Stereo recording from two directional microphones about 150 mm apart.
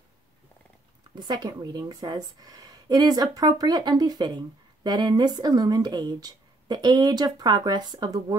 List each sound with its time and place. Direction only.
1.1 s a woman's voice: 30° right (ahead or behind)